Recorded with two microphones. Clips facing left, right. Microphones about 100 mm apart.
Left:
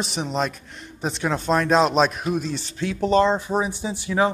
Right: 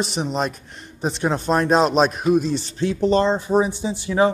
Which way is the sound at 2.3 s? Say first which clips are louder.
Right 7 dB; 35° right (ahead or behind).